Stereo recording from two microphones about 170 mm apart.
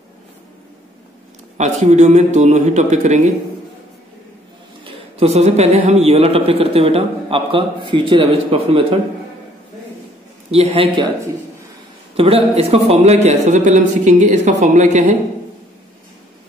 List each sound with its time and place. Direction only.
1.6 s a man's voice: 45° right (ahead or behind)
4.8 s a man's voice: 40° right (ahead or behind)
10.5 s a man's voice: 35° right (ahead or behind)
12.2 s a man's voice: 35° right (ahead or behind)